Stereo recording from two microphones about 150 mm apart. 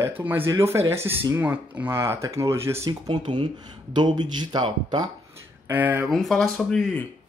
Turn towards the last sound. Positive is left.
turn(degrees=5)  # may be behind; listen again after turning